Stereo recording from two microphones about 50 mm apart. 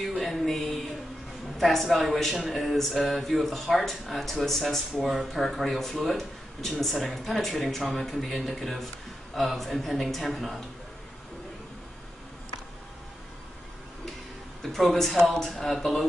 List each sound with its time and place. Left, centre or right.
0.2 s a sound: centre
1.6 s speech: centre
5.0 s speech: centre
5.5 s speech: centre
14.6 s speech: centre